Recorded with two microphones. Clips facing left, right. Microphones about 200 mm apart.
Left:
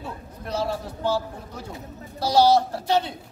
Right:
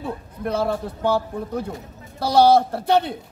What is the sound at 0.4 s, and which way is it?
A man's voice, 55° right (ahead or behind).